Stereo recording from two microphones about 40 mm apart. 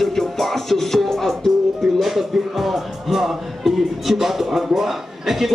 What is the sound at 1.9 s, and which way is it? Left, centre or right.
Music, centre.